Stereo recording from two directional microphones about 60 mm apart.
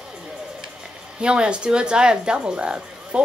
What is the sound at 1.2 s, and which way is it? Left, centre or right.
Speech, centre.